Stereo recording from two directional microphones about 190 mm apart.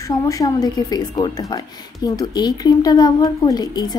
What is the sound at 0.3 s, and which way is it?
A woman's voice, 20° left (ahead or behind).